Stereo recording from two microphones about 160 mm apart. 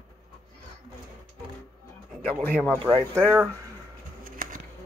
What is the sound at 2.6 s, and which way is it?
Speech, 5° left (ahead or behind).